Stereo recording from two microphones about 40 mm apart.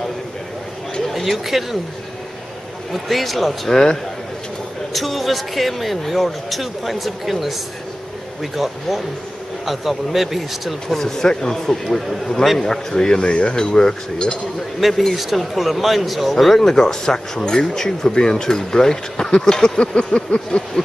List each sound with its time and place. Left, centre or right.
1.0 s speech: centre
2.9 s a man's voice: centre
3.7 s speech: centre
4.9 s a man's voice: centre
11.0 s speech: centre
12.5 s speech: centre
13.2 s speech: left
14.8 s a man's voice: centre